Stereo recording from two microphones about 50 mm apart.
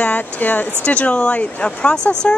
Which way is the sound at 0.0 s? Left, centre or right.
Left.